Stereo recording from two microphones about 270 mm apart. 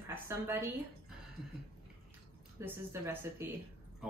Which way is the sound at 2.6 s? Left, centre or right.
Centre.